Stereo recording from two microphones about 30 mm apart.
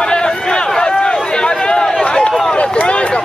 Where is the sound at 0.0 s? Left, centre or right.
Left.